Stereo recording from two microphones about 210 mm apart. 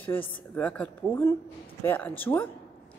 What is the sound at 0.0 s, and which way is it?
A man's voice, 10° left (ahead or behind).